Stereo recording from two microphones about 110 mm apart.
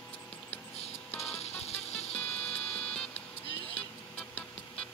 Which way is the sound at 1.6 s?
70° left (ahead or behind).